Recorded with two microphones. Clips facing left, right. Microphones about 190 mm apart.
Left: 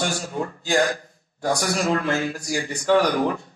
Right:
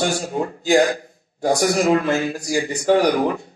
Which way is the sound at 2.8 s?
45° right (ahead or behind).